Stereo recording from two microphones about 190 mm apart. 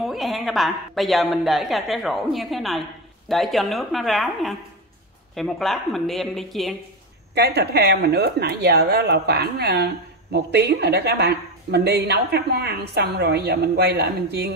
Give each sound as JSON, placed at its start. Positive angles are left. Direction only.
{"t": 0.0, "sound": "a woman's voice", "side_deg": 0}
{"t": 7.3, "sound": "speech", "side_deg": -60}